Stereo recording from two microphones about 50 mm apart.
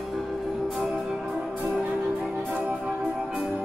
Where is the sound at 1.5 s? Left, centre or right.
Right.